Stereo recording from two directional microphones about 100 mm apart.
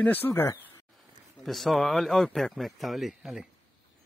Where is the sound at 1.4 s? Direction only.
Centre (ahead or behind).